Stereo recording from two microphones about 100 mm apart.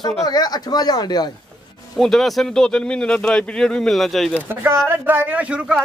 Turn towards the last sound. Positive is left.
turn(degrees=-10)  # may be behind; listen again after turning